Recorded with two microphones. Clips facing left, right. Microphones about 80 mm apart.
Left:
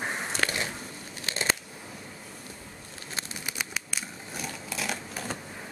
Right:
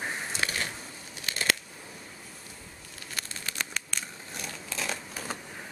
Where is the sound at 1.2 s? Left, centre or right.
Left.